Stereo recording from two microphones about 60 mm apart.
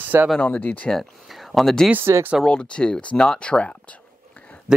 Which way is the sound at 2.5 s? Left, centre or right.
Centre.